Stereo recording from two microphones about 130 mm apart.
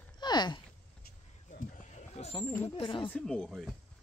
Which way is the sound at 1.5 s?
70° left (ahead or behind).